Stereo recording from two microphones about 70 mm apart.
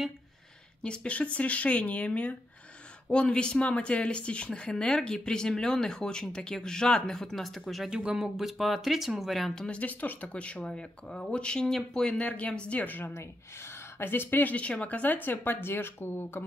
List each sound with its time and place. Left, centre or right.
0.8 s speech: centre
9.7 s speech: left